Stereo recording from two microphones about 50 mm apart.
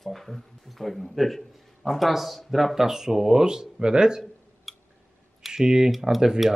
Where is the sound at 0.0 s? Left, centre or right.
Centre.